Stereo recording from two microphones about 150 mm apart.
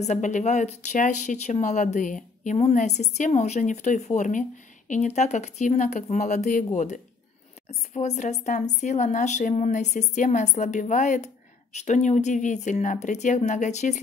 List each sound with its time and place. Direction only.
0.0 s speech: 50° left (ahead or behind)